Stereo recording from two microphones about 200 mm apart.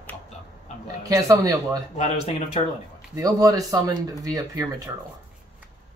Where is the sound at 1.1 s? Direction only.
15° right (ahead or behind).